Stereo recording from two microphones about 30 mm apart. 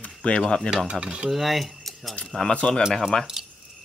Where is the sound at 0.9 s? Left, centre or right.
Right.